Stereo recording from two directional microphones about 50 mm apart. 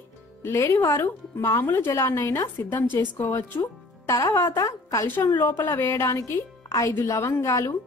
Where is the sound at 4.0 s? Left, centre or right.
Left.